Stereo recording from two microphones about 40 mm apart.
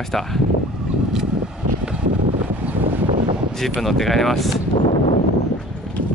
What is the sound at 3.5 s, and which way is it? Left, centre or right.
Speech, centre.